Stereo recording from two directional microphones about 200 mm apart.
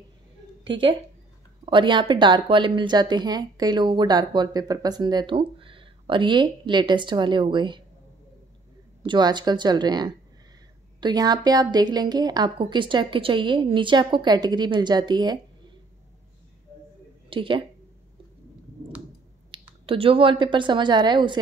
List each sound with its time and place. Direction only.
0.7 s speech: 25° right (ahead or behind)
9.0 s speech: 25° right (ahead or behind)
17.3 s speech: 25° right (ahead or behind)
19.5 s a sound: 25° right (ahead or behind)
19.9 s speech: 25° right (ahead or behind)